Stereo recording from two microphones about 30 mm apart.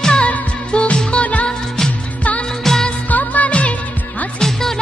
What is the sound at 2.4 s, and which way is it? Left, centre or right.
Music, centre.